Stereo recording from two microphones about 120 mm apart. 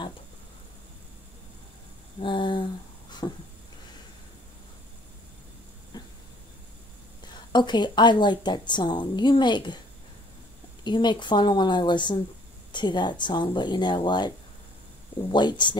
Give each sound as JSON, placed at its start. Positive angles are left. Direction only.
{"t": 2.2, "sound": "speech", "side_deg": 40}
{"t": 7.5, "sound": "a woman's voice", "side_deg": 40}
{"t": 10.8, "sound": "a woman's voice", "side_deg": 40}